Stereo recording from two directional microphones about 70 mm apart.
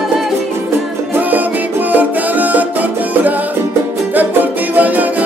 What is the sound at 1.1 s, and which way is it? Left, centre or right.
Music, right.